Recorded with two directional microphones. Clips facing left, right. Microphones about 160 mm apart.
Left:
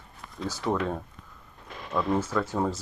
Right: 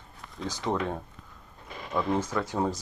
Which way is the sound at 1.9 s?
15° right (ahead or behind).